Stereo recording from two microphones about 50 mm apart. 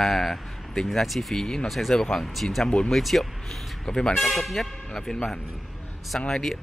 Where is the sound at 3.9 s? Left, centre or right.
Centre.